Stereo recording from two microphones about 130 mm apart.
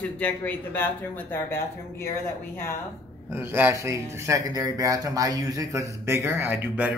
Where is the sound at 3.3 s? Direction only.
15° right (ahead or behind).